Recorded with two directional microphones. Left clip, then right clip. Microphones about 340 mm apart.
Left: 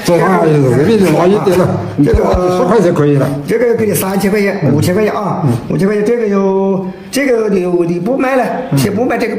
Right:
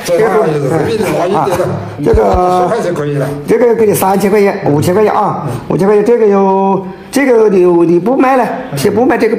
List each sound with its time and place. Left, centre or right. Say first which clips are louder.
0.1 s a man's voice: even; centre
2.7 s a man's voice: left 4 dB; centre
3.4 s a man's voice: right 5 dB; centre
5.8 s a man's voice: right 5 dB; centre